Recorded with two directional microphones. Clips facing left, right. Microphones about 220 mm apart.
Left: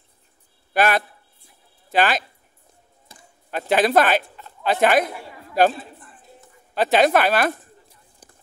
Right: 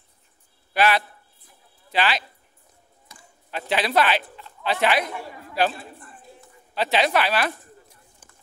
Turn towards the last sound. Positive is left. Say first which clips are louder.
# left 5 dB
turn(degrees=50)  # may be behind; listen again after turning